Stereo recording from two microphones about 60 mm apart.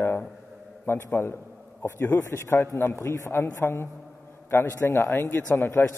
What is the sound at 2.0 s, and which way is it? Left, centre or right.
Speech, left.